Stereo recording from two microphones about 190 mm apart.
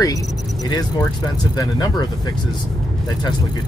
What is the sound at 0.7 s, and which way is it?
Speech, 20° left (ahead or behind).